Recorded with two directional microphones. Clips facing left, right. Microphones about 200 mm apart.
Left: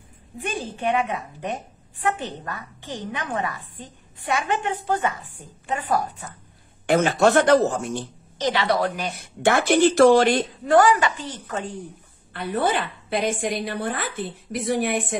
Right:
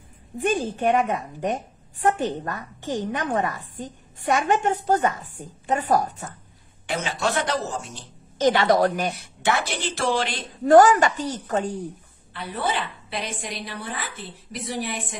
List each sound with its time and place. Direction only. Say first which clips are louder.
0.4 s a woman's voice: right 5 dB; 45° right (ahead or behind)
6.9 s speech: left 8 dB; 55° left (ahead or behind)
8.4 s a woman's voice: right 4 dB; 50° right (ahead or behind)
9.1 s a woman's voice: left 4 dB; 50° left (ahead or behind)
10.6 s a woman's voice: right 4 dB; 45° right (ahead or behind)
12.3 s a woman's voice: left 5 dB; 50° left (ahead or behind)